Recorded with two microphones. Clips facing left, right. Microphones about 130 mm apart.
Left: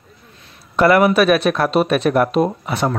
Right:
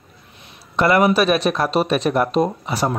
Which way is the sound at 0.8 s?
25° right (ahead or behind).